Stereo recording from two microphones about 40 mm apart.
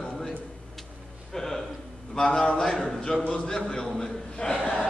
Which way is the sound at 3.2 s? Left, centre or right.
Left.